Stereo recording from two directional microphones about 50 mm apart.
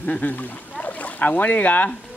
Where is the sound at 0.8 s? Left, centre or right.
Left.